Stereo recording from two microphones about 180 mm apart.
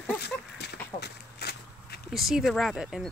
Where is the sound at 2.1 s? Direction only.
Centre (ahead or behind).